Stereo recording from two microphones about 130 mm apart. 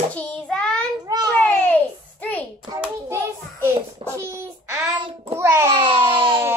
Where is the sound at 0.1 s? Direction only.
10° left (ahead or behind).